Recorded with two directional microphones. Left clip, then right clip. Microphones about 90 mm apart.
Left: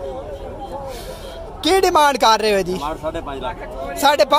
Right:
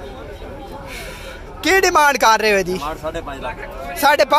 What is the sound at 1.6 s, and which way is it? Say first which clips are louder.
Speech: right 1 dB; 35° left (ahead or behind).